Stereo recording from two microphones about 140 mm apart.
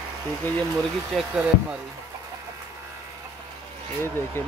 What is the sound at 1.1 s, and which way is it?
Speech, 5° right (ahead or behind).